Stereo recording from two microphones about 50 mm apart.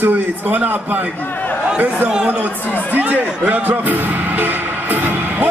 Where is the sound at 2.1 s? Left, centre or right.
Centre.